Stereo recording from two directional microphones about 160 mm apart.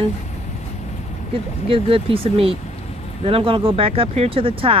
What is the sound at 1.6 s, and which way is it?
Speech, 35° right (ahead or behind).